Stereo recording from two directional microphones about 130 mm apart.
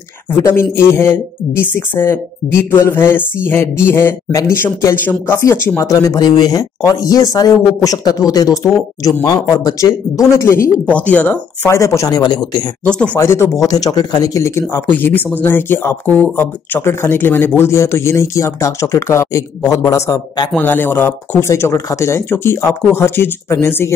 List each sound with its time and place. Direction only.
0.6 s speech: 20° left (ahead or behind)
12.8 s speech: 10° left (ahead or behind)
13.2 s speech: 20° left (ahead or behind)
20.5 s speech: 15° left (ahead or behind)